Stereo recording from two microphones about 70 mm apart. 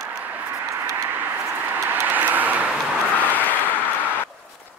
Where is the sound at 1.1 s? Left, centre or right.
Right.